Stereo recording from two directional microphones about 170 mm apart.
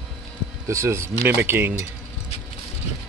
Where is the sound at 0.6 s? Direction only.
15° right (ahead or behind).